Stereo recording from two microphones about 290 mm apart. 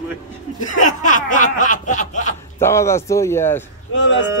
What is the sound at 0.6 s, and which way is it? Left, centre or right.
Snicker, left.